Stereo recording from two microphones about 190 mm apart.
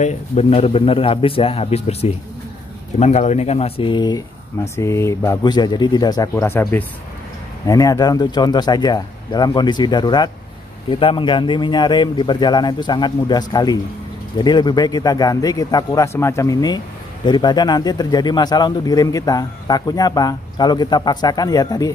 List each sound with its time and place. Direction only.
0.0 s a man's voice: 35° left (ahead or behind); by 21.9 s 20° left (ahead or behind)